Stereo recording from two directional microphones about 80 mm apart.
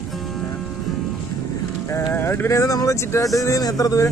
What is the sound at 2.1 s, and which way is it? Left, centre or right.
Speech, left.